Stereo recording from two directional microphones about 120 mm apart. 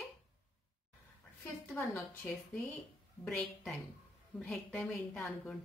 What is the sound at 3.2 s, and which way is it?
A woman's voice, 5° left (ahead or behind).